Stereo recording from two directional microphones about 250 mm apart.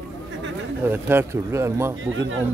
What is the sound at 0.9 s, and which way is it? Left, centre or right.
Speech, centre.